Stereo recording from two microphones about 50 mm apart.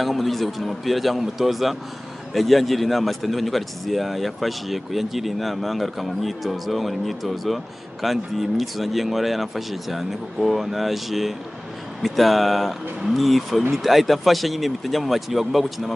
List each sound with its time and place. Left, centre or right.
0.0 s speech: centre